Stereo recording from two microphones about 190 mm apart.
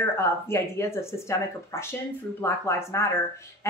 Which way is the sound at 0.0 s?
15° left (ahead or behind).